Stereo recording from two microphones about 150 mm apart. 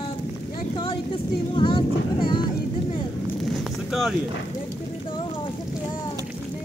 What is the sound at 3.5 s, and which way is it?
Wind noise, centre (ahead or behind).